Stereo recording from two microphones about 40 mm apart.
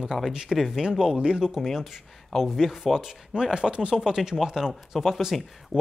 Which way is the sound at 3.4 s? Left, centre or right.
Centre.